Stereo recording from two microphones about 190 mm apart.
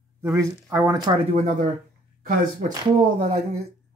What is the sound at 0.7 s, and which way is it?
Speech, 15° right (ahead or behind).